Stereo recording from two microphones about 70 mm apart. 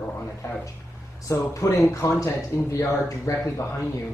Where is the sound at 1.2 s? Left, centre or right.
Left.